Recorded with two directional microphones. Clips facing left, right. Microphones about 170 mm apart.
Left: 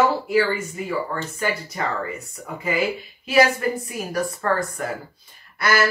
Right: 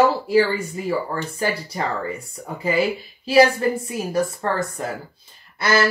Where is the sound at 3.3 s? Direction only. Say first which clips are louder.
Right 3 dB; 30° right (ahead or behind).